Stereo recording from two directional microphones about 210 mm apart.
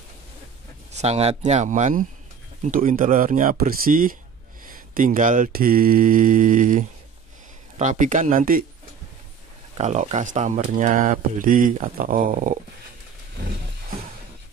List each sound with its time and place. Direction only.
0.9 s speech: 30° right (ahead or behind)
9.8 s speech: 35° right (ahead or behind)